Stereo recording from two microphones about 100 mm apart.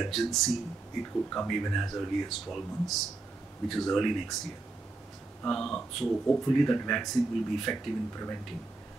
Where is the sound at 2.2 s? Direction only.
Centre (ahead or behind).